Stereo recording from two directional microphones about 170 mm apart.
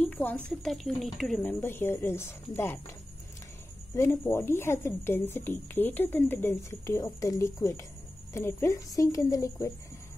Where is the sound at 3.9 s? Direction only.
15° left (ahead or behind).